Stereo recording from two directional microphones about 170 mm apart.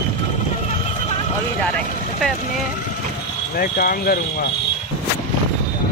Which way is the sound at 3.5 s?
55° left (ahead or behind).